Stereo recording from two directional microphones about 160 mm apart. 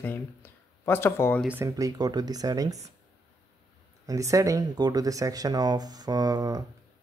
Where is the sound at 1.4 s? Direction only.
10° right (ahead or behind).